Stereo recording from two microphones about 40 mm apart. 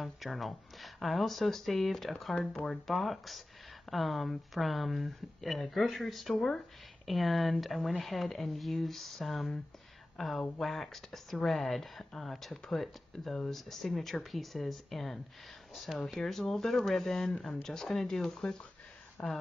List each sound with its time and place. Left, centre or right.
0.0 s speech: centre
13.1 s speech: centre
16.2 s speech: centre